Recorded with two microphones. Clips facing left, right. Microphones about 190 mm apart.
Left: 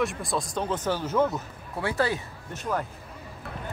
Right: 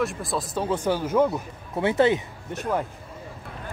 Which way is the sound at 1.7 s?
20° right (ahead or behind).